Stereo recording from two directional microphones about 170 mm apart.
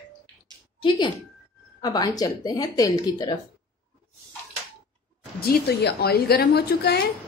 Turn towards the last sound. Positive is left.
turn(degrees=70)  # may be behind; listen again after turning